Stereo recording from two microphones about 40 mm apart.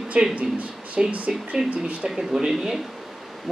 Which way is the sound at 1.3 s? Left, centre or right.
Centre.